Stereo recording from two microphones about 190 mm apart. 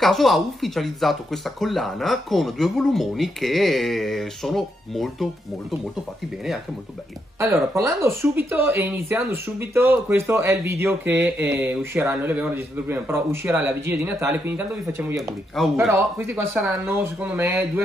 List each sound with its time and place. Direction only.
0.0 s speech: centre (ahead or behind)
7.7 s speech: 15° right (ahead or behind)
15.1 s speech: centre (ahead or behind)
15.9 s speech: 15° right (ahead or behind)